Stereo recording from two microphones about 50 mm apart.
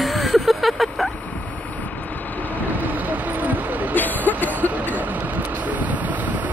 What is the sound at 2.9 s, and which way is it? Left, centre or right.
Vehicle, right.